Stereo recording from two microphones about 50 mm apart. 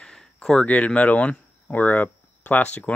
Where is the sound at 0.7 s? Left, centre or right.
Left.